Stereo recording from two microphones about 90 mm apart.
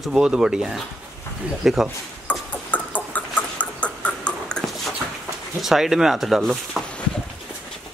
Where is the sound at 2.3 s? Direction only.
15° left (ahead or behind).